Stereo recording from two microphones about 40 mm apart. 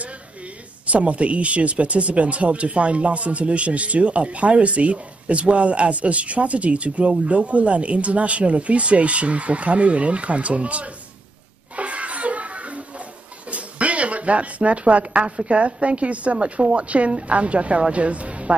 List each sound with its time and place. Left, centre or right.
0.8 s speech: right
11.7 s music: right
13.5 s speech: right